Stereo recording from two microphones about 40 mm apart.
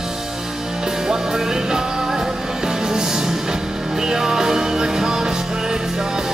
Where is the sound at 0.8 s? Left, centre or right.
Centre.